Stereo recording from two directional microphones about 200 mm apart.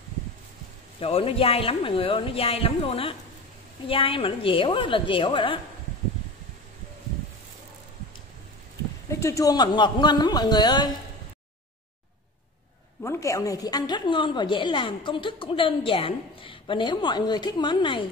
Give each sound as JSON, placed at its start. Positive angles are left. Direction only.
{"t": 0.9, "sound": "a woman's voice", "side_deg": 30}
{"t": 9.1, "sound": "a woman's voice", "side_deg": 15}
{"t": 13.0, "sound": "a woman's voice", "side_deg": 15}